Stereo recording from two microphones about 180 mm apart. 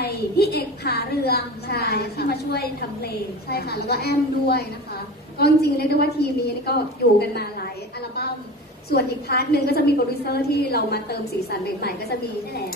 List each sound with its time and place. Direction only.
0.0 s a woman's voice: 60° left (ahead or behind)
8.9 s a woman's voice: 60° left (ahead or behind)